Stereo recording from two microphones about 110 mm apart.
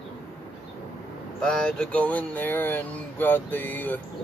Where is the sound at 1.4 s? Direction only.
5° left (ahead or behind).